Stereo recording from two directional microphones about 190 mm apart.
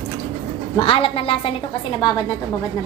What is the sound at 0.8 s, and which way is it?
Speech, 30° left (ahead or behind).